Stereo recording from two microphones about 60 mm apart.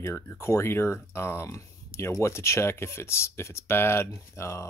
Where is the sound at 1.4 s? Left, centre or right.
Left.